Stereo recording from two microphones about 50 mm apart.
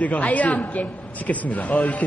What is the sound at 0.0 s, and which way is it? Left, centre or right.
A woman's voice, left.